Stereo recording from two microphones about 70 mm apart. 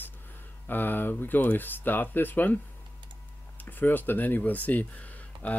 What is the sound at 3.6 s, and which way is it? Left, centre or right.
Speech, left.